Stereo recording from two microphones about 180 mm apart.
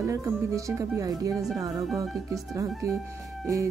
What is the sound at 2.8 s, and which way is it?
Speech, 20° right (ahead or behind).